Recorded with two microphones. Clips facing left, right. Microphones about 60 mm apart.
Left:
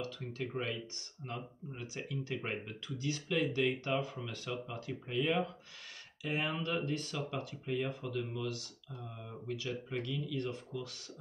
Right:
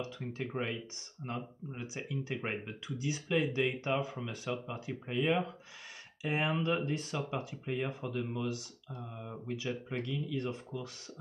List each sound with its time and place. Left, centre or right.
0.0 s speech: right